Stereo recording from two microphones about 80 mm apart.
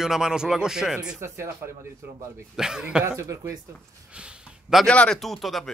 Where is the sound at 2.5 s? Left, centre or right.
Centre.